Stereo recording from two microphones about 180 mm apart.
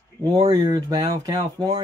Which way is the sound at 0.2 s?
25° right (ahead or behind).